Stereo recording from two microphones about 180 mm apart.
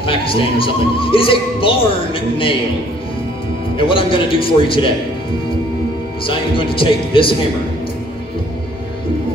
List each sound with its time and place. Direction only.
0.0 s speech: 30° left (ahead or behind)
3.7 s speech: 30° left (ahead or behind)
6.2 s speech: 30° left (ahead or behind)